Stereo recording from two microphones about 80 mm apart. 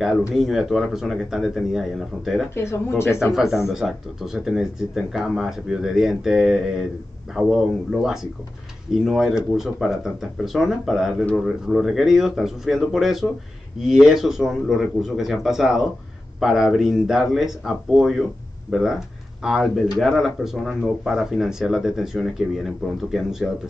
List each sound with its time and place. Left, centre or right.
0.3 s speech: centre
2.5 s speech: left
3.3 s speech: centre